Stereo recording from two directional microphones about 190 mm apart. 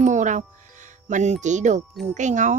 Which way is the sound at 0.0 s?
40° right (ahead or behind).